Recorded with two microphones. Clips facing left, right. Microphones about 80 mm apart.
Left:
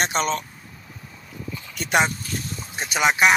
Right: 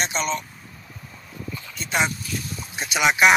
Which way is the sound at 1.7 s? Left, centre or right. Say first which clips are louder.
Left 5 dB; left.